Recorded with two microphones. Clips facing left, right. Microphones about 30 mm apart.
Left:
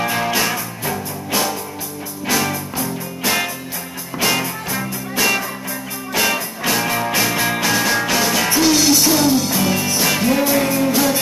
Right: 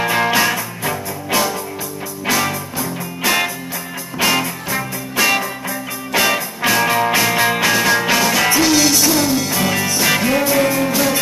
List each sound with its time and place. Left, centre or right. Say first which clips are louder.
0.0 s music: right 3 dB; centre
8.6 s music: even; centre
10.4 s music: right 1 dB; centre